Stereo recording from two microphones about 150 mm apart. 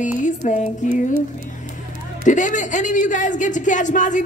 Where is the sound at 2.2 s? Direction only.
55° left (ahead or behind).